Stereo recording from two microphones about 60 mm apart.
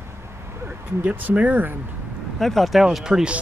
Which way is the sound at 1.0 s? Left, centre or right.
Right.